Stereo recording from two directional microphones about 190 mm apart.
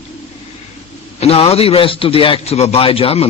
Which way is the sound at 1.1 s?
30° left (ahead or behind).